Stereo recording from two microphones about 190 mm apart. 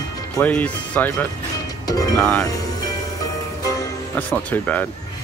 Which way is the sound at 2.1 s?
5° left (ahead or behind).